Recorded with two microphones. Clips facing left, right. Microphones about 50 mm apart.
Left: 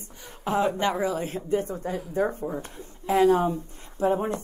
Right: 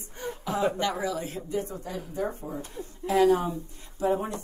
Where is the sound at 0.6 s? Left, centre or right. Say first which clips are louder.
Left 2 dB; left.